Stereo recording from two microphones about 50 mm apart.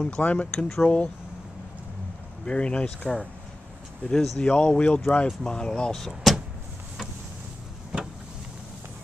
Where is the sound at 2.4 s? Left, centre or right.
Left.